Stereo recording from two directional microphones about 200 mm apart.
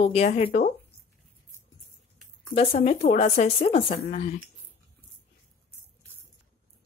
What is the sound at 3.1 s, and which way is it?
A woman's voice, 30° left (ahead or behind).